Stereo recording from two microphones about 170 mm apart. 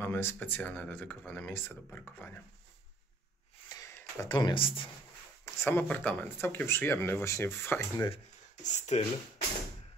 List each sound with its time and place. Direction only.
0.0 s speech: 15° left (ahead or behind)
3.6 s a sound: 20° left (ahead or behind)
4.2 s speech: 25° left (ahead or behind)
5.4 s speech: 15° left (ahead or behind)
8.6 s speech: 40° left (ahead or behind)